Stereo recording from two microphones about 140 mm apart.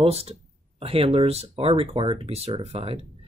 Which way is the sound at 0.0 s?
45° right (ahead or behind).